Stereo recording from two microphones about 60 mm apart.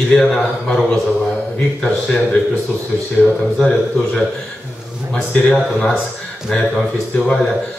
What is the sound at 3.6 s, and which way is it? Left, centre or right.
A man's voice, centre.